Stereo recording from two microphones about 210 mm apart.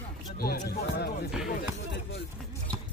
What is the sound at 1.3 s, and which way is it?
Speech, 5° right (ahead or behind).